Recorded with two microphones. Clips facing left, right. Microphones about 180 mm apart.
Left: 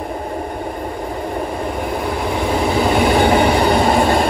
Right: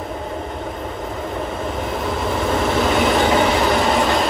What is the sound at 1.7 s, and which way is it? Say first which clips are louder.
Train: left 2 dB; centre (ahead or behind).